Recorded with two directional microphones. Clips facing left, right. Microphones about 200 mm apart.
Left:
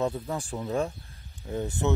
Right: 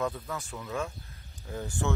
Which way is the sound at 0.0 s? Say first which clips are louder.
Left 4 dB; 30° left (ahead or behind).